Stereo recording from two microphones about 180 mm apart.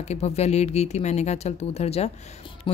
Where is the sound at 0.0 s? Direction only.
35° left (ahead or behind).